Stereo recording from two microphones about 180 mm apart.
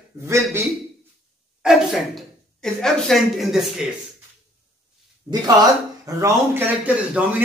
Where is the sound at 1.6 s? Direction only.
Centre (ahead or behind).